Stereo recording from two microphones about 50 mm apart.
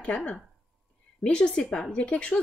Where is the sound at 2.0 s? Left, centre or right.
Left.